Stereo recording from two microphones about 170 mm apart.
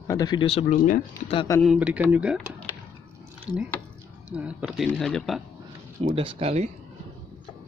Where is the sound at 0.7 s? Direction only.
50° left (ahead or behind).